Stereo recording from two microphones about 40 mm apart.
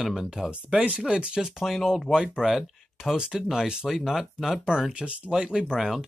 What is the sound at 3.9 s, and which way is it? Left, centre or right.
Speech, centre.